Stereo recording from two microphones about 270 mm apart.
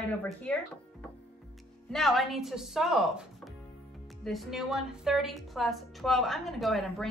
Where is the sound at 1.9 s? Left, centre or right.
Centre.